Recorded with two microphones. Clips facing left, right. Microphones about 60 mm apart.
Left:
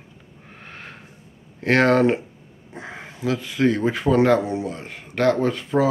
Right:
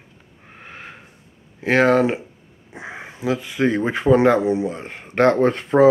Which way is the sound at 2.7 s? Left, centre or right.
Centre.